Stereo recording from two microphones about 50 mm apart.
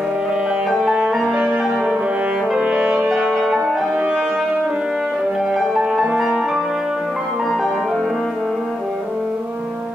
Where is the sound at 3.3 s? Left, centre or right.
Centre.